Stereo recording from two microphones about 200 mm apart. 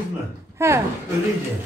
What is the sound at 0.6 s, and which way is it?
Speech, 15° right (ahead or behind).